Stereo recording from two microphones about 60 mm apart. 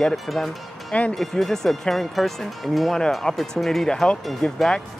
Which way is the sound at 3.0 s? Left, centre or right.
Centre.